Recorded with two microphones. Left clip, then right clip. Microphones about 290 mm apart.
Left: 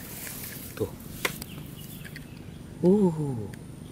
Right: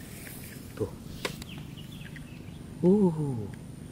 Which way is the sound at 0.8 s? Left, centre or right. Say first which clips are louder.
Left 2 dB; right.